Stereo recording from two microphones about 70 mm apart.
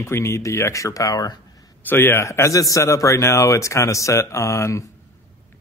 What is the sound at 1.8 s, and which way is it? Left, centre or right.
A man's voice, left.